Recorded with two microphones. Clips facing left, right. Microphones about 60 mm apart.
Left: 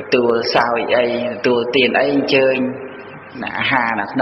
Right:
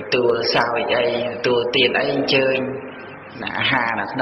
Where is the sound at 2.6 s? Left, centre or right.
Left.